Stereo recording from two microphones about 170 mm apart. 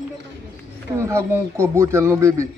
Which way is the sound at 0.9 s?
15° right (ahead or behind).